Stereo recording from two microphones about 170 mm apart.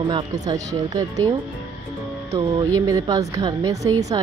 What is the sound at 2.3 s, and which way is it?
A woman's voice, 20° right (ahead or behind).